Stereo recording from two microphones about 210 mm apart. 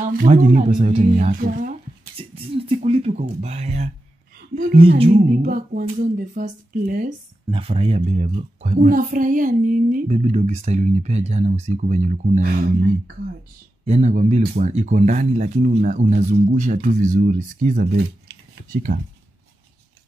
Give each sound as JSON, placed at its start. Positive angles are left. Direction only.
{"t": 0.0, "sound": "speech", "side_deg": -40}
{"t": 2.1, "sound": "a sound", "side_deg": -25}
{"t": 4.7, "sound": "music", "side_deg": -25}
{"t": 5.1, "sound": "speech", "side_deg": -40}
{"t": 7.5, "sound": "speech", "side_deg": -25}
{"t": 13.8, "sound": "speech", "side_deg": -30}